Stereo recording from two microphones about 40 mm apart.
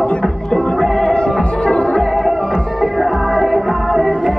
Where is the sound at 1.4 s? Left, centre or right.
Left.